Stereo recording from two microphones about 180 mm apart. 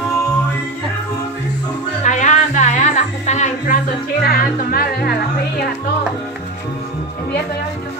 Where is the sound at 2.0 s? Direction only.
40° left (ahead or behind).